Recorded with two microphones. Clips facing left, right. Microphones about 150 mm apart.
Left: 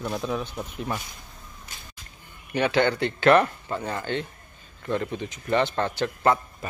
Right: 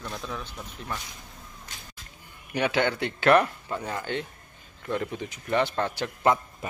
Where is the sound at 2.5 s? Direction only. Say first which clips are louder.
Left 3 dB; 10° right (ahead or behind).